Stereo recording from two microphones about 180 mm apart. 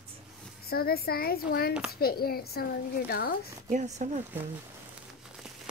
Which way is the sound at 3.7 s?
40° right (ahead or behind).